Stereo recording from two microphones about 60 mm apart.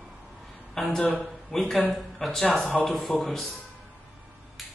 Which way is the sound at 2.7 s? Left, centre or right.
Centre.